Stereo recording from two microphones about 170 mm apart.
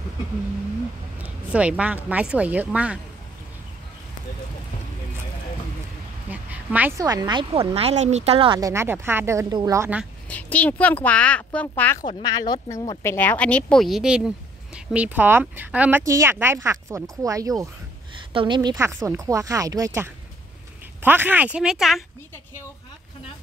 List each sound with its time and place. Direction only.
1.2 s speech: 5° right (ahead or behind)
6.3 s a sound: 10° right (ahead or behind)
7.0 s speech: 25° right (ahead or behind)
7.7 s speech: 40° right (ahead or behind); by 9.8 s 20° right (ahead or behind)
10.3 s speech: 10° left (ahead or behind)
12.0 s speech: 25° left (ahead or behind); by 22.0 s centre (ahead or behind)